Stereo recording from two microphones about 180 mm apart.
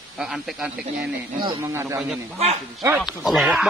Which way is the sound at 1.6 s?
15° right (ahead or behind).